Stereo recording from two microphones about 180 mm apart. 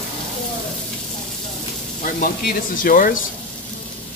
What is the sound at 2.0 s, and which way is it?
Speech, 50° left (ahead or behind).